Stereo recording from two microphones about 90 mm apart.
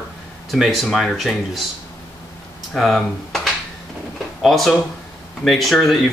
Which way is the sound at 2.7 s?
5° left (ahead or behind).